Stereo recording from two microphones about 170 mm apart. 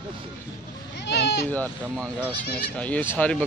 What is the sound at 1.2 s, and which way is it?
Bleat, 80° left.